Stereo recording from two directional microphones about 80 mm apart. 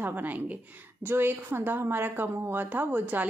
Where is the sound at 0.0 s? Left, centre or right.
Right.